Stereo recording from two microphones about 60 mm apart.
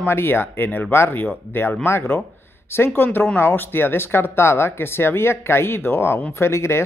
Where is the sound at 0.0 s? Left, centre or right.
Left.